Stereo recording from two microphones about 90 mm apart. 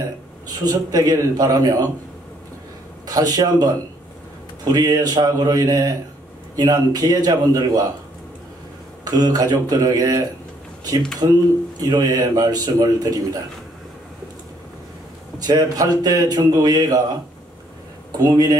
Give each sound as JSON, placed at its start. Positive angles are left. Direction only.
{"t": 0.5, "sound": "a man's voice", "side_deg": -45}
{"t": 3.1, "sound": "a man's voice", "side_deg": -45}
{"t": 4.7, "sound": "a man's voice", "side_deg": -45}
{"t": 9.0, "sound": "a man's voice", "side_deg": -45}
{"t": 15.3, "sound": "a man's voice", "side_deg": -45}
{"t": 18.1, "sound": "a man's voice", "side_deg": -45}